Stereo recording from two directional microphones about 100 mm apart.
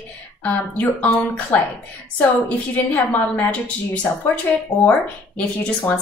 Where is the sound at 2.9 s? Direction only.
15° left (ahead or behind).